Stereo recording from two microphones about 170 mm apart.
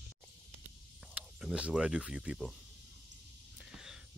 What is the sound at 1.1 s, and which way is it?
Speech, 5° right (ahead or behind).